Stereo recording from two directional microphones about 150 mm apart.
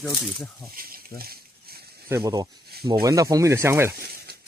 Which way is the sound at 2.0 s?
20° right (ahead or behind).